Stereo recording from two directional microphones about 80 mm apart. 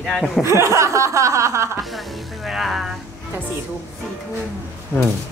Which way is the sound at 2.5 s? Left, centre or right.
Centre.